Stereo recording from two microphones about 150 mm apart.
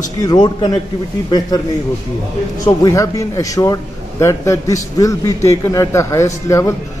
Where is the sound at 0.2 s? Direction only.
30° left (ahead or behind).